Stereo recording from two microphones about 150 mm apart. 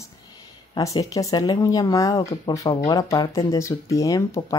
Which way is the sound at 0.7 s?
25° left (ahead or behind).